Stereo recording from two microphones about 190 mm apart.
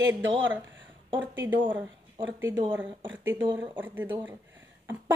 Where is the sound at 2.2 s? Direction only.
10° right (ahead or behind).